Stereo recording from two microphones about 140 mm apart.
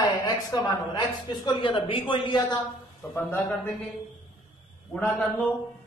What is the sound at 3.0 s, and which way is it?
Speech, 20° left (ahead or behind).